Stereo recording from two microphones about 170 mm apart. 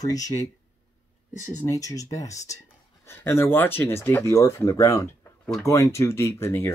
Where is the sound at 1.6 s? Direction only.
20° left (ahead or behind).